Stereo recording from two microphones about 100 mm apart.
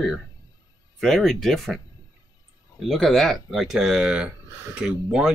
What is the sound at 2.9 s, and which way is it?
Speech, centre (ahead or behind).